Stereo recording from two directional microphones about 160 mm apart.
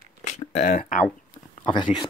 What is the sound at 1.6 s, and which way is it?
Speech, 30° left (ahead or behind).